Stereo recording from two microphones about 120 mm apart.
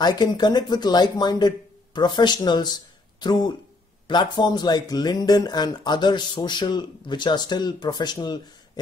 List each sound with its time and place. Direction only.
0.0 s speech: 35° left (ahead or behind)